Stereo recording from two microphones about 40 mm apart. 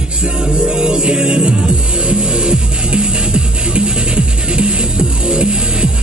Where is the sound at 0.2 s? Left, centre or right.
Right.